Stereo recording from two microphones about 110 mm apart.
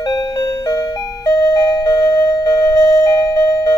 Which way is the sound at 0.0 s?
35° left (ahead or behind).